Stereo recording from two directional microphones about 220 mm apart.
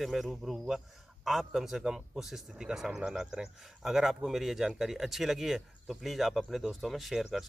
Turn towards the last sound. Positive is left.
turn(degrees=0)  # may be behind; listen again after turning